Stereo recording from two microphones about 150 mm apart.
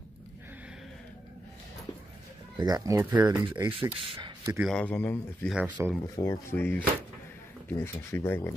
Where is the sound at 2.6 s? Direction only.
25° right (ahead or behind).